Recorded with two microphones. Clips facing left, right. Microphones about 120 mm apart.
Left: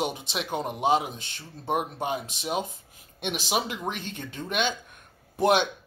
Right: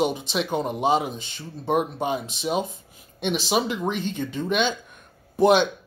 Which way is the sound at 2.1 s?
10° left (ahead or behind).